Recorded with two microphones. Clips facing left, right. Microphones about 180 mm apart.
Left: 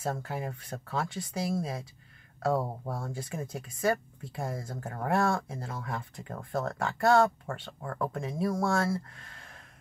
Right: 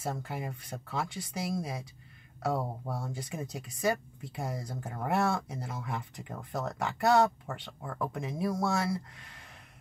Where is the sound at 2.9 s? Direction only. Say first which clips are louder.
Left 1 dB; 15° right (ahead or behind).